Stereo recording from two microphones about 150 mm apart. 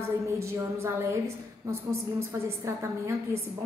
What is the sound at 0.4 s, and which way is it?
A woman's voice, 20° right (ahead or behind).